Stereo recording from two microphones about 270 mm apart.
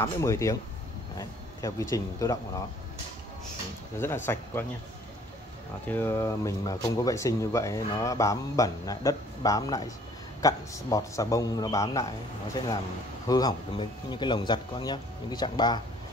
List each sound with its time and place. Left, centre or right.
0.0 s speech: centre
4.0 s speech: centre
5.9 s speech: centre